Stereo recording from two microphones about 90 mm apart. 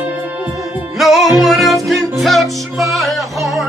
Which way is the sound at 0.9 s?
Centre (ahead or behind).